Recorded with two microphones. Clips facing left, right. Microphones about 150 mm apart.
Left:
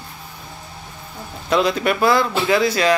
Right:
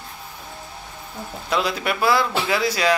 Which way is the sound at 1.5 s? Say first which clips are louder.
Left 5 dB; 5° right (ahead or behind).